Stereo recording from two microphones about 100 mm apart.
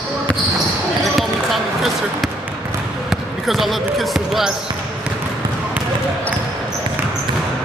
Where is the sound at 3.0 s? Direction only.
Centre (ahead or behind).